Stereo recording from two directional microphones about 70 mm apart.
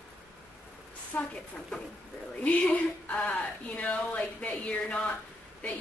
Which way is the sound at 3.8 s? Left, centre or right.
Centre.